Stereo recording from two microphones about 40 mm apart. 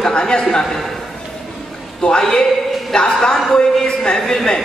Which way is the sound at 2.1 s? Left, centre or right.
Centre.